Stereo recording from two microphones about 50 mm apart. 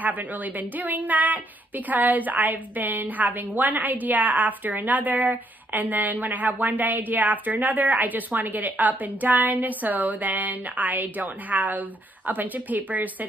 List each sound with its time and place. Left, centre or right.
0.0 s a woman's voice: right